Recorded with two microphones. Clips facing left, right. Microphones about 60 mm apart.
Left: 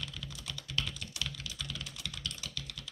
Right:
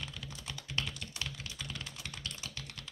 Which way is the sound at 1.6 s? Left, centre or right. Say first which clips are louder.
Left 1 dB; right.